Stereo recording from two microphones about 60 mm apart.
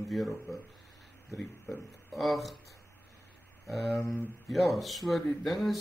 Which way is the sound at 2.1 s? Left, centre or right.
Centre.